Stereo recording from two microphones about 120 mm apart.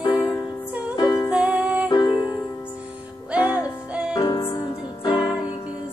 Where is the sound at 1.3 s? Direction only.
10° right (ahead or behind).